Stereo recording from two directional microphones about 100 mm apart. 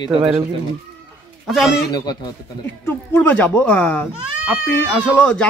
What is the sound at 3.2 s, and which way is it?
Speech, 15° left (ahead or behind).